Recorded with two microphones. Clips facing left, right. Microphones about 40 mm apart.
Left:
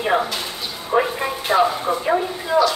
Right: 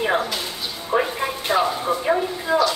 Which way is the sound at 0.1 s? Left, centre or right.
Centre.